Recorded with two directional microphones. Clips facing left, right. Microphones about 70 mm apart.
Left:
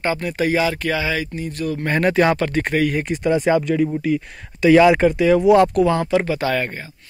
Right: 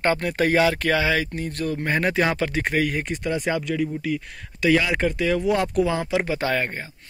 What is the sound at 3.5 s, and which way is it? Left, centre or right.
Speech, left.